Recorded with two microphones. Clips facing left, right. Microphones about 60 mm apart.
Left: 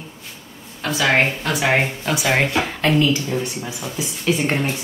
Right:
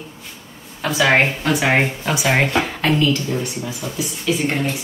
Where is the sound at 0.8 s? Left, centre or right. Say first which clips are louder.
Right 2 dB; centre.